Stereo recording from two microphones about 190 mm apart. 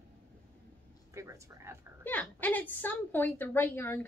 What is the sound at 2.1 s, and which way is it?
A woman's voice, 10° left (ahead or behind).